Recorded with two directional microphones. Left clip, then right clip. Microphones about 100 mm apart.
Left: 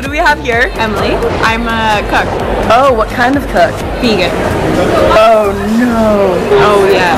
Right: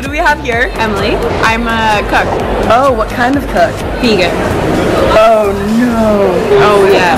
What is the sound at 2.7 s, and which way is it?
Speech, 15° left (ahead or behind).